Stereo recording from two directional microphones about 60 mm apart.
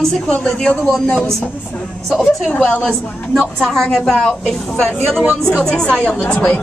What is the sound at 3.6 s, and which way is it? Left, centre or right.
A woman's voice, centre.